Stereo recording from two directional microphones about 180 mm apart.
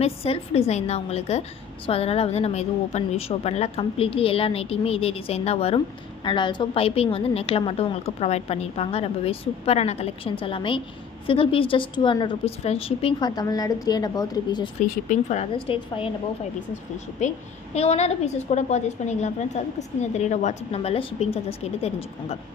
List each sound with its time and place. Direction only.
0.0 s a woman's voice: 35° left (ahead or behind)
14.9 s speech: 45° left (ahead or behind)
15.5 s a woman's voice: 30° left (ahead or behind)
17.7 s a woman's voice: 35° left (ahead or behind)